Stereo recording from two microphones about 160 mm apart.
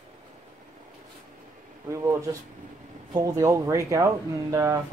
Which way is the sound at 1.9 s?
20° right (ahead or behind).